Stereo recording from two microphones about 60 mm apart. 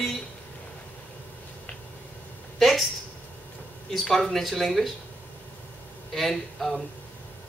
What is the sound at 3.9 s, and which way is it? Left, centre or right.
Speech, centre.